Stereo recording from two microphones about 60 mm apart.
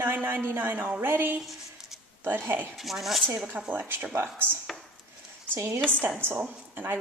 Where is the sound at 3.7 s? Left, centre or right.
Right.